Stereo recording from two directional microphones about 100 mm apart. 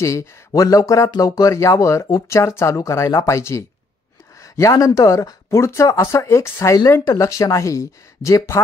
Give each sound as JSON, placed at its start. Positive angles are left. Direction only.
{"t": 0.0, "sound": "speech", "side_deg": 30}